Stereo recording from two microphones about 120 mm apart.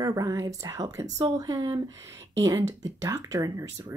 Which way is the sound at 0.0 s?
30° right (ahead or behind).